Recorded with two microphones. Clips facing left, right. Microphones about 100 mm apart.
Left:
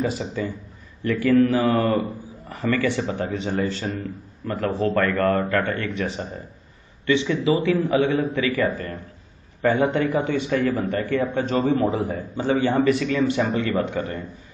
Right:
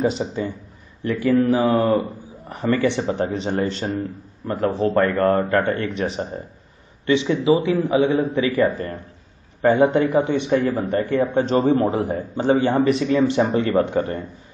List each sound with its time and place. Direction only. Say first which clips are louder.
0.0 s a man's voice: right 3 dB; 25° right (ahead or behind)
11.5 s speech: right 2 dB; 45° right (ahead or behind)
11.9 s a man's voice: right 3 dB; 30° right (ahead or behind)
12.4 s a man's voice: right 3 dB; 20° right (ahead or behind); by 14.2 s 35° right (ahead or behind)